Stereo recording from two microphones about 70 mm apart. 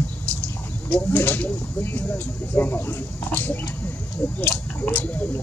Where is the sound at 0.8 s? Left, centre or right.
Left.